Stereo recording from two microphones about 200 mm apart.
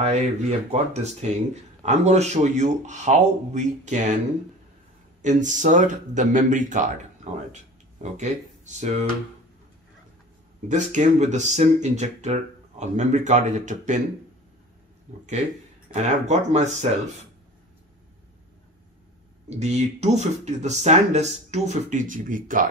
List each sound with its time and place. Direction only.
0.0 s speech: 35° right (ahead or behind)
5.2 s speech: 35° right (ahead or behind)
10.7 s speech: 35° right (ahead or behind)
15.1 s speech: 35° right (ahead or behind)
19.6 s speech: 35° right (ahead or behind)